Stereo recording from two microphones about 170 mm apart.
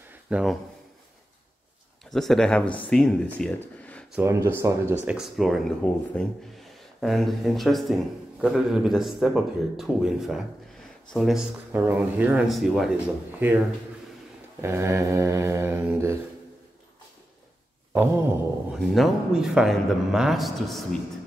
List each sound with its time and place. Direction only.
0.1 s a sound: 5° right (ahead or behind)
2.0 s speech: centre (ahead or behind)
4.1 s mantra: 15° right (ahead or behind)
6.1 s speech: centre (ahead or behind)
14.6 s mantra: 15° right (ahead or behind)
17.9 s mantra: 10° right (ahead or behind)
18.8 s speech: centre (ahead or behind)